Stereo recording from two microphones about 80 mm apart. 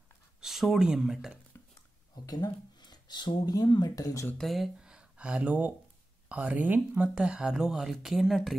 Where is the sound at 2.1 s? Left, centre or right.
Left.